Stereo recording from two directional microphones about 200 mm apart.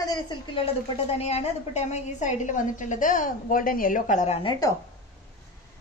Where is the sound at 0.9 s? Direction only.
30° left (ahead or behind).